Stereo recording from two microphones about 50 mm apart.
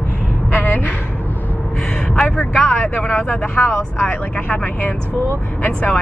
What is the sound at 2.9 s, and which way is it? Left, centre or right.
Speech, left.